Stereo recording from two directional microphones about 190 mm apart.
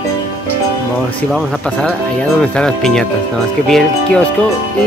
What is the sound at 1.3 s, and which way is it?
Speech, 5° left (ahead or behind).